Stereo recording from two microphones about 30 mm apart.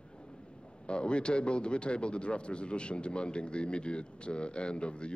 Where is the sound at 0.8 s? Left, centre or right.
Left.